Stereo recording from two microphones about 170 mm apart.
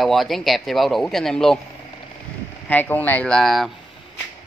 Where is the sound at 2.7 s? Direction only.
10° left (ahead or behind).